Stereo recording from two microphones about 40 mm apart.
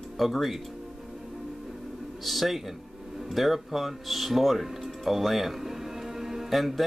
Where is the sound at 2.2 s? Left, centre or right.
Centre.